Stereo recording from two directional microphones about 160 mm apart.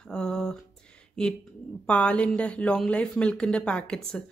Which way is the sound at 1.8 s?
5° left (ahead or behind).